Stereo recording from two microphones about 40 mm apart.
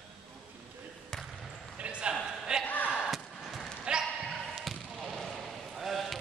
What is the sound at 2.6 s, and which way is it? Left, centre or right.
Slam, left.